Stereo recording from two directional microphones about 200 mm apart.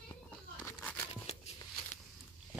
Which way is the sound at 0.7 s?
10° left (ahead or behind).